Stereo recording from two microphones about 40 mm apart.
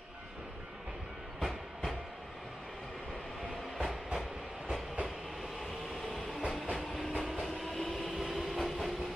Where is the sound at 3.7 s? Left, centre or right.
Centre.